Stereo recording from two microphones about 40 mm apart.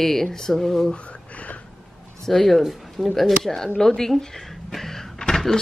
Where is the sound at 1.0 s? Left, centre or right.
Left.